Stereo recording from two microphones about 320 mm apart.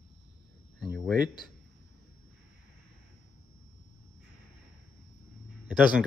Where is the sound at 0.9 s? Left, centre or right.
Centre.